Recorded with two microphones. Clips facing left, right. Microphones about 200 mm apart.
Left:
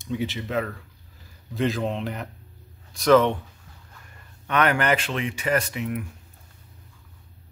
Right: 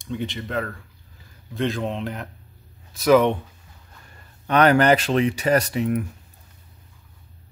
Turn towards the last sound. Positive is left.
turn(degrees=-40)  # may be behind; listen again after turning